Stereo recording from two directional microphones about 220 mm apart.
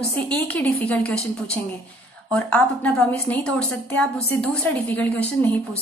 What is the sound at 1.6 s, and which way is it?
Speech, 25° right (ahead or behind).